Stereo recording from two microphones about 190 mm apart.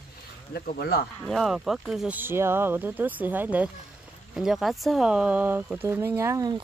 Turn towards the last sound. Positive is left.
turn(degrees=-20)  # may be behind; listen again after turning